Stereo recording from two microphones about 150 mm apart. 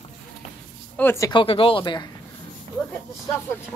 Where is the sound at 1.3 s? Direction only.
35° left (ahead or behind).